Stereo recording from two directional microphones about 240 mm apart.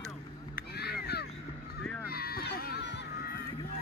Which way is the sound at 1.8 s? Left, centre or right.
Left.